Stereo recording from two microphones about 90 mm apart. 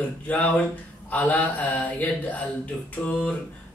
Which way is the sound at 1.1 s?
15° left (ahead or behind).